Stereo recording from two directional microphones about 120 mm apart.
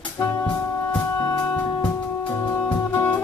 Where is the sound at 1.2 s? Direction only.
35° left (ahead or behind).